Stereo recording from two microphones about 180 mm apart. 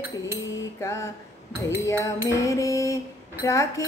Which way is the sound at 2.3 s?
15° left (ahead or behind).